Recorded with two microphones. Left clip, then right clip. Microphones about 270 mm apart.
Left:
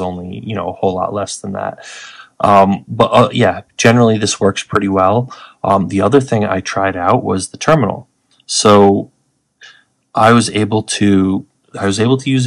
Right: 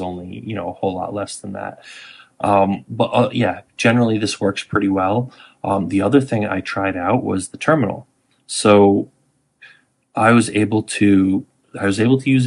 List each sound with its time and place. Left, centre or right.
0.0 s speech: left
10.1 s speech: centre